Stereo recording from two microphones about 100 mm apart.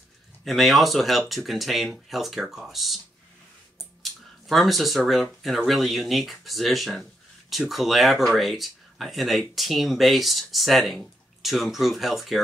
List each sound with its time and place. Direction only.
0.5 s speech: centre (ahead or behind)
4.0 s speech: centre (ahead or behind)